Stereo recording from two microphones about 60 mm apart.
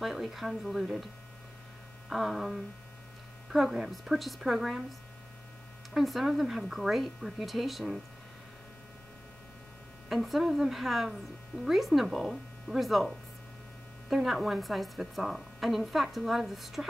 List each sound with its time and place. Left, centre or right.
0.0 s a woman's voice: centre
5.9 s a woman's voice: centre
10.0 s a woman's voice: centre